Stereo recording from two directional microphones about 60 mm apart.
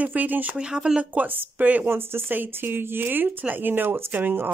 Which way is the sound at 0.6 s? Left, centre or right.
Centre.